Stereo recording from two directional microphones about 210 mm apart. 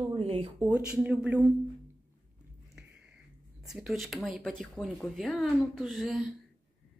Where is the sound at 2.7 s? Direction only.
5° right (ahead or behind).